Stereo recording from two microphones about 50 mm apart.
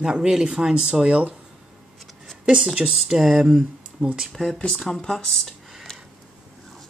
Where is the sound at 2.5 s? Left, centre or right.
Centre.